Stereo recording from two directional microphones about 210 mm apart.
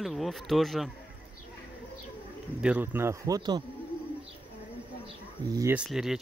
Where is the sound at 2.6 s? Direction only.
5° right (ahead or behind).